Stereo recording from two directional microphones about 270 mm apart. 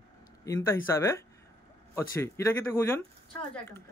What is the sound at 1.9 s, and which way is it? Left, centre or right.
Speech, centre.